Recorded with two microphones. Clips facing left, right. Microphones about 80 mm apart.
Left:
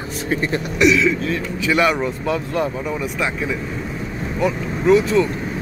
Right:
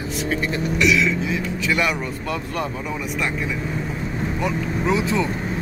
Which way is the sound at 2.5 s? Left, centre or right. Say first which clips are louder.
Left 4 dB; centre.